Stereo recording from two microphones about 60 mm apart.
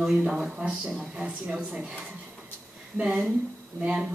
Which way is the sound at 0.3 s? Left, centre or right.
Centre.